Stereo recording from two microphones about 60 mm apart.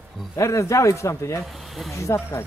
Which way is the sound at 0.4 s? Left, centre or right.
Left.